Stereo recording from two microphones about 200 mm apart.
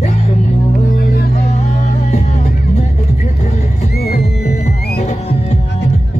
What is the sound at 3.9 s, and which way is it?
Music, 50° left (ahead or behind).